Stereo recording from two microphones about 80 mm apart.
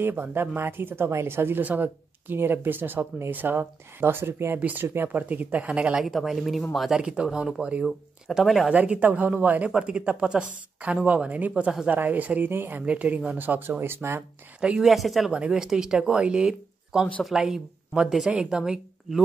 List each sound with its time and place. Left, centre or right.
0.0 s speech: right
4.6 s speech: centre
6.0 s speech: centre
7.0 s a woman's voice: centre
7.3 s speech: centre
8.7 s a woman's voice: centre
14.6 s speech: centre
14.9 s a woman's voice: centre